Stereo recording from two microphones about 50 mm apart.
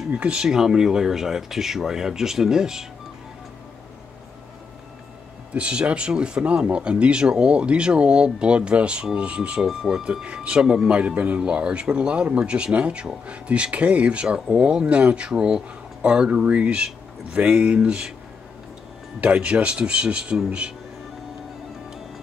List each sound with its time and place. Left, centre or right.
0.1 s speech: right
5.5 s speech: right
9.6 s speech: centre
10.2 s speech: right
19.2 s speech: right